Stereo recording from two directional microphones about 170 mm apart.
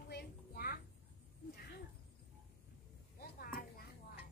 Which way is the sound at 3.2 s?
60° left (ahead or behind).